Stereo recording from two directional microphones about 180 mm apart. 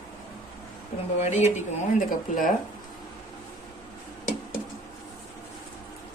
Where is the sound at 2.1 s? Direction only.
50° left (ahead or behind).